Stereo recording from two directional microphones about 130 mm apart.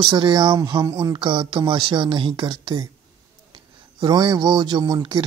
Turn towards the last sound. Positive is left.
turn(degrees=-35)  # may be behind; listen again after turning